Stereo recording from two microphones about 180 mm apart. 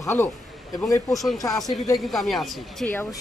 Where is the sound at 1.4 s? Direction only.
20° left (ahead or behind).